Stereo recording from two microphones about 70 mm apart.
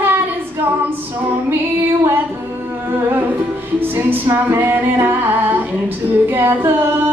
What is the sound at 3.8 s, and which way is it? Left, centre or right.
Music, right.